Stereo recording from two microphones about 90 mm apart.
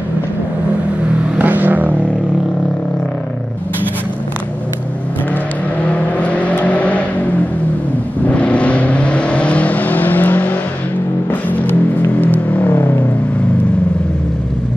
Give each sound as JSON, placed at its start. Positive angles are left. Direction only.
{"t": 1.4, "sound": "vehicle", "side_deg": -20}
{"t": 5.9, "sound": "vehicle", "side_deg": 15}
{"t": 8.3, "sound": "vehicle", "side_deg": 15}
{"t": 12.2, "sound": "vehicle", "side_deg": 20}